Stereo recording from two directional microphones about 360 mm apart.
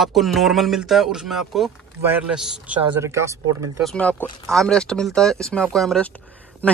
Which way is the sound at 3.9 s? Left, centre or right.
Centre.